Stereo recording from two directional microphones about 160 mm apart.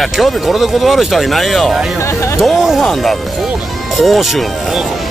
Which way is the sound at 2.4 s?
Centre (ahead or behind).